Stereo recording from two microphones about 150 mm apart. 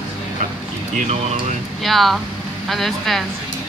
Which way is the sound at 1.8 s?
Centre (ahead or behind).